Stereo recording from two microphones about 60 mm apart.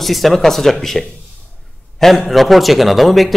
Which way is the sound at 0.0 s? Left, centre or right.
Centre.